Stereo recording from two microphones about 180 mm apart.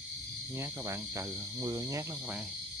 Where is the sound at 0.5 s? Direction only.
15° right (ahead or behind).